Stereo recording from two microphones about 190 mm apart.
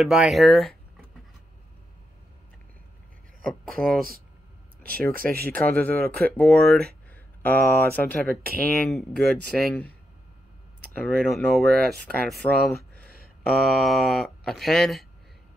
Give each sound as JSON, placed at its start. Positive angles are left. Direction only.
{"t": 0.0, "sound": "speech", "side_deg": 0}
{"t": 3.6, "sound": "speech", "side_deg": 0}
{"t": 5.1, "sound": "speech", "side_deg": -50}
{"t": 5.5, "sound": "speech", "side_deg": 5}
{"t": 9.2, "sound": "speech", "side_deg": -55}
{"t": 11.0, "sound": "speech", "side_deg": 5}
{"t": 13.1, "sound": "a sound", "side_deg": 55}
{"t": 13.6, "sound": "speech", "side_deg": 0}